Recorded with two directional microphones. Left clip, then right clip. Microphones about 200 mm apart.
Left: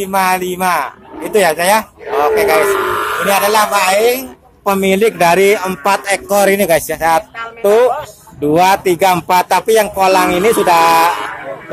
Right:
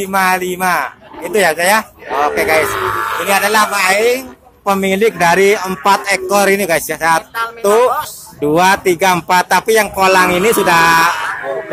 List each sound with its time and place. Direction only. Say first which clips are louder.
0.0 s a man's voice: even; centre (ahead or behind)